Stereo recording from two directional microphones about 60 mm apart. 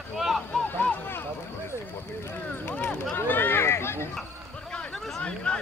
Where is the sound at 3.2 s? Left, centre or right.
Left.